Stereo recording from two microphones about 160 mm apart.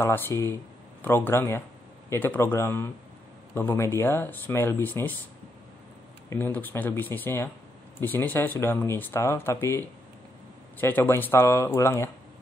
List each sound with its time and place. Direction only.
0.3 s speech: 20° left (ahead or behind)
6.3 s speech: 10° left (ahead or behind)